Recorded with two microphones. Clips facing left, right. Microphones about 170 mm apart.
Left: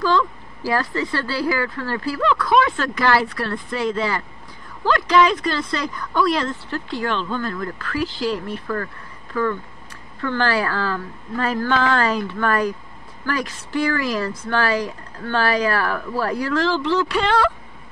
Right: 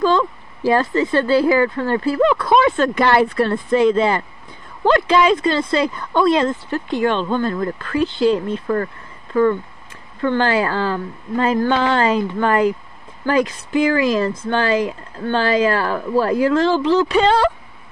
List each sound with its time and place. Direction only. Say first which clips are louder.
0.0 s speech: right 3 dB; 20° right (ahead or behind)